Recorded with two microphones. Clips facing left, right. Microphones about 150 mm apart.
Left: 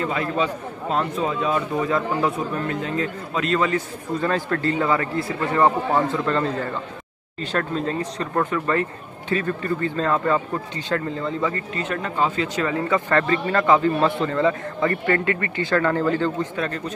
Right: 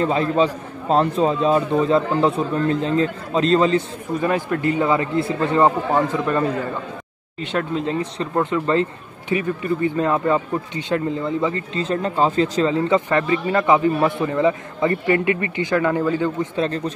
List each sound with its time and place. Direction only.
0.0 s a man's voice: 30° right (ahead or behind)
4.2 s a man's voice: 15° right (ahead or behind)
16.5 s a man's voice: 30° right (ahead or behind)